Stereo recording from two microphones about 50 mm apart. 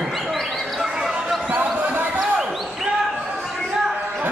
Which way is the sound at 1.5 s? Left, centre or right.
Right.